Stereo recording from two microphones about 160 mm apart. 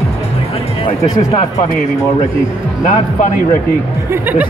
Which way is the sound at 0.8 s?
35° left (ahead or behind).